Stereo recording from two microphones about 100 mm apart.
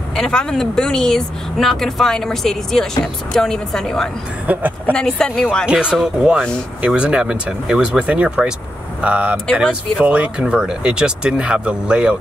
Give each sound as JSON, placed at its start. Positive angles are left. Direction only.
{"t": 0.1, "sound": "speech", "side_deg": 5}
{"t": 4.5, "sound": "speech", "side_deg": -15}
{"t": 4.9, "sound": "speech", "side_deg": 5}
{"t": 5.7, "sound": "speech", "side_deg": -10}